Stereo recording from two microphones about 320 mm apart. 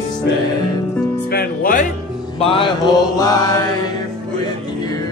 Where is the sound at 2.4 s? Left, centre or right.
Centre.